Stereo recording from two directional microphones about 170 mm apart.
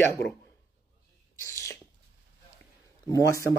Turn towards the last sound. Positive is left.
turn(degrees=20)  # may be behind; listen again after turning